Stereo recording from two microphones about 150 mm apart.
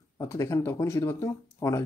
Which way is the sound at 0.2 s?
20° left (ahead or behind).